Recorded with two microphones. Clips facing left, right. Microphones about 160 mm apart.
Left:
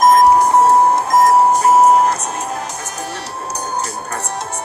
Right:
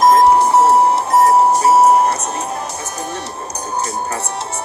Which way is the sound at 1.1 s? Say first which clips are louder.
Even; 10° right (ahead or behind).